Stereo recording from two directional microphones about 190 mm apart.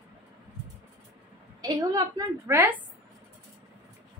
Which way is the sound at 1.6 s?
20° right (ahead or behind).